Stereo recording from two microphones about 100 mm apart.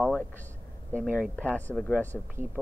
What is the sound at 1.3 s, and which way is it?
Speech, 15° left (ahead or behind).